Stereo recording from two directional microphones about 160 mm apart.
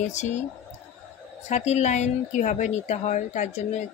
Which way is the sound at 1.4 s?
45° left (ahead or behind).